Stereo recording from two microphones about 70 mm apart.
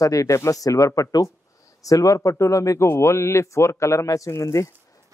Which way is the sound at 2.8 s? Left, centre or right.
Left.